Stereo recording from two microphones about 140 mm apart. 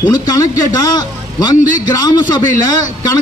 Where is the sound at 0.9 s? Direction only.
25° left (ahead or behind).